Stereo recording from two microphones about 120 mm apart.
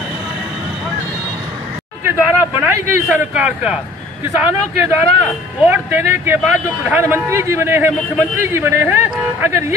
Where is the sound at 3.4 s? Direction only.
10° right (ahead or behind).